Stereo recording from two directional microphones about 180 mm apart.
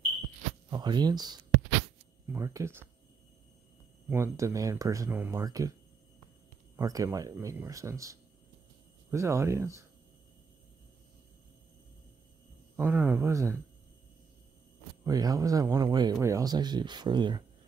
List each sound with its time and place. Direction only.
0.7 s speech: 25° right (ahead or behind)
4.1 s speech: 15° right (ahead or behind)
6.8 s speech: 20° right (ahead or behind)
12.7 s speech: 10° right (ahead or behind)
15.0 s speech: 20° right (ahead or behind)